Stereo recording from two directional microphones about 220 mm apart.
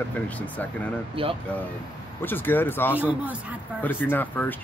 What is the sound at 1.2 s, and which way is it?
Speech, 25° right (ahead or behind).